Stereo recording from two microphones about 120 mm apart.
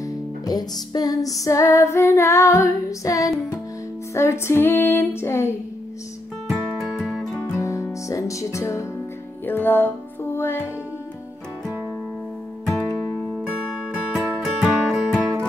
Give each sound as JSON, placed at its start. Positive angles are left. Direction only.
{"t": 0.0, "sound": "music", "side_deg": 30}
{"t": 6.5, "sound": "music", "side_deg": 0}
{"t": 7.5, "sound": "music", "side_deg": 25}
{"t": 13.6, "sound": "music", "side_deg": -5}